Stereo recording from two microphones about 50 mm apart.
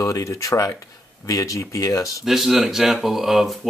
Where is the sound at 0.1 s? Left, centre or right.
Left.